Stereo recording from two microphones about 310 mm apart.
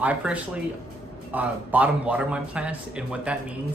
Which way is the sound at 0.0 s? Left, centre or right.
Centre.